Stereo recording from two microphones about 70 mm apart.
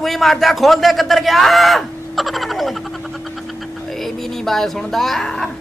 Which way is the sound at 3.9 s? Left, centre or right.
Centre.